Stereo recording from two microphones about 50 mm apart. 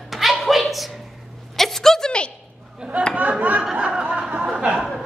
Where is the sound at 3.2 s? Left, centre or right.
Right.